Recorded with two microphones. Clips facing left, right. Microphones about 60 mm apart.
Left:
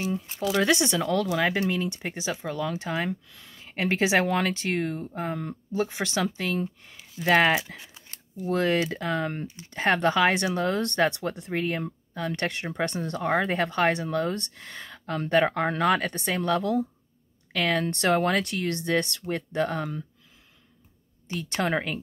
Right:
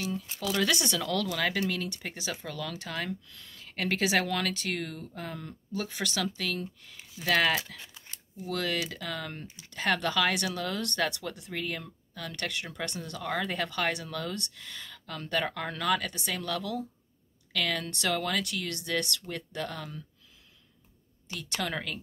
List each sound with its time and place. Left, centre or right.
0.0 s speech: left
7.6 s speech: centre
8.1 s speech: left
21.3 s speech: left